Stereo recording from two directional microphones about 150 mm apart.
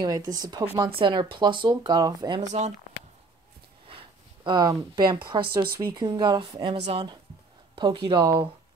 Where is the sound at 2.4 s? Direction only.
50° right (ahead or behind).